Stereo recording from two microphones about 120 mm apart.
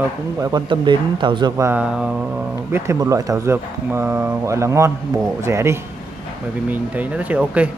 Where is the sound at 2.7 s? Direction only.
20° right (ahead or behind).